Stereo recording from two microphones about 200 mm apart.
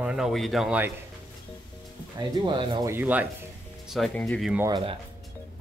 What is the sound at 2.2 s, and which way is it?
Speech, 20° right (ahead or behind).